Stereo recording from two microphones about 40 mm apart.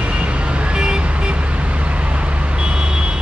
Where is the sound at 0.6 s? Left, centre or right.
Right.